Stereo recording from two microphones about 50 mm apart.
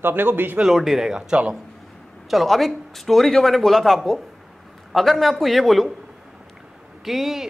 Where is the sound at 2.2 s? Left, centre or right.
Centre.